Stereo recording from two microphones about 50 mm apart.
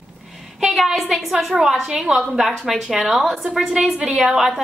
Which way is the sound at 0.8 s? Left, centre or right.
Centre.